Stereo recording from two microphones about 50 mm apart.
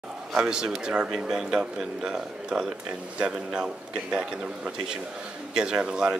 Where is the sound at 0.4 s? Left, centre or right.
Centre.